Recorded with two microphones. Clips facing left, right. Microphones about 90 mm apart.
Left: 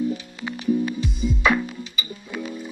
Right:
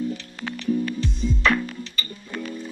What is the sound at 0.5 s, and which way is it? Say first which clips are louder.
Music: left 2 dB; 10° left (ahead or behind).